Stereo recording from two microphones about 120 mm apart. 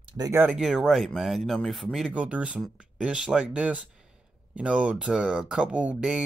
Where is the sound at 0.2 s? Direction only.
20° right (ahead or behind).